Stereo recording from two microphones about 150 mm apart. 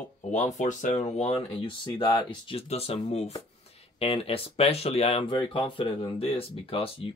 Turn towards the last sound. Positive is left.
turn(degrees=40)  # may be behind; listen again after turning